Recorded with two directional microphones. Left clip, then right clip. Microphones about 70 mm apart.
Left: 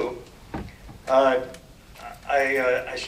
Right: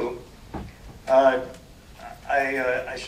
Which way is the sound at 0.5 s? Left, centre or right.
Left.